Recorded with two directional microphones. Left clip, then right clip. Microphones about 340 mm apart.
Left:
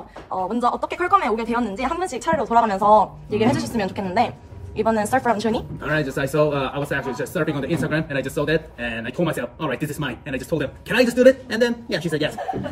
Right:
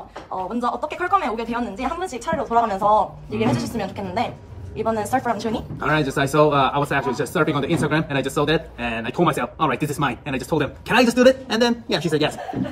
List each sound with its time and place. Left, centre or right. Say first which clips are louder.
0.5 s speech: left 2 dB; left
5.8 s speech: right 3 dB; centre